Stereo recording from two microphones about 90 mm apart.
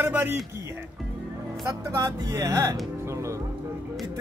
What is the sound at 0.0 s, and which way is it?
Speech, 20° right (ahead or behind).